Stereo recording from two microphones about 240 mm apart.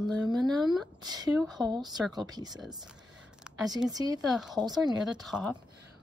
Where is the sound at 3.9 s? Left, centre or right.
Centre.